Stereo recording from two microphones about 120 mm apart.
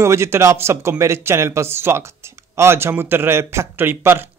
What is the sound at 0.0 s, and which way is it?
A man's voice, 25° right (ahead or behind).